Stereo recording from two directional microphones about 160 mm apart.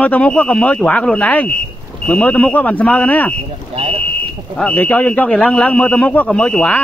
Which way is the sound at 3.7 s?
40° right (ahead or behind).